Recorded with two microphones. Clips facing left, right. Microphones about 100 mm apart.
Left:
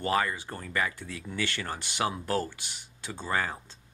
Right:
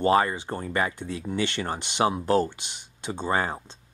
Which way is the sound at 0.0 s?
30° right (ahead or behind).